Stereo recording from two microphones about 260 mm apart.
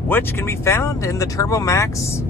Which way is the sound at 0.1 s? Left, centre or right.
Centre.